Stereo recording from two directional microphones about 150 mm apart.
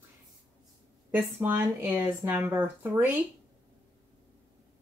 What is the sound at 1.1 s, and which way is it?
Speech, 15° right (ahead or behind).